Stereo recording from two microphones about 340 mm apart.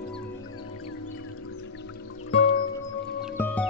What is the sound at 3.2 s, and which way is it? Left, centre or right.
Music, centre.